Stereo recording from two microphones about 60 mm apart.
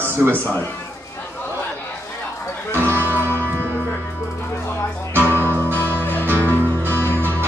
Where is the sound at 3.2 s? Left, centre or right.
Left.